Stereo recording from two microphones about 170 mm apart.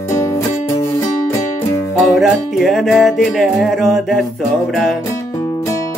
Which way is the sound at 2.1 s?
Centre (ahead or behind).